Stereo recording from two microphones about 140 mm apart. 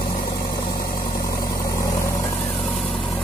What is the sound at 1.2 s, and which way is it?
Vehicle, 25° left (ahead or behind).